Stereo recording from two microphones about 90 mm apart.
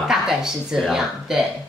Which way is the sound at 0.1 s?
5° right (ahead or behind).